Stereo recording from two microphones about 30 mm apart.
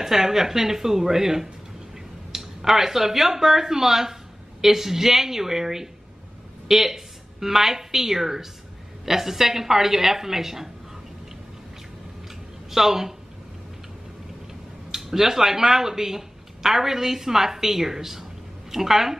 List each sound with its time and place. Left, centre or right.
0.0 s a woman's voice: centre
12.7 s speech: centre
14.9 s speech: centre